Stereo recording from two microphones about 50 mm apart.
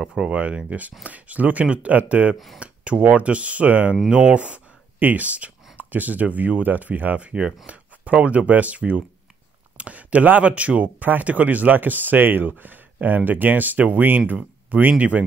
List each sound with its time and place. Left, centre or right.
0.3 s speech: right
2.3 s speech: centre
2.6 s speech: right
3.9 s speech: centre
4.9 s speech: right